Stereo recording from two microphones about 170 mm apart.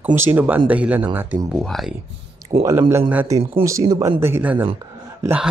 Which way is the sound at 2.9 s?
10° right (ahead or behind).